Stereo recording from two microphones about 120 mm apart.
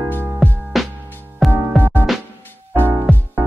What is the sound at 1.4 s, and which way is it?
Music, centre (ahead or behind).